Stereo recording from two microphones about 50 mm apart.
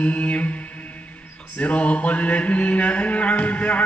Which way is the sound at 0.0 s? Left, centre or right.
Left.